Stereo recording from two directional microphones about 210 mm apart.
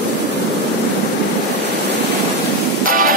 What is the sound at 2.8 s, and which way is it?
Music, 40° right (ahead or behind).